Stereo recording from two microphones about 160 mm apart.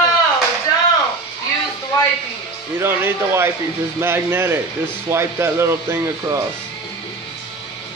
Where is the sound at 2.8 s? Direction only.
15° right (ahead or behind).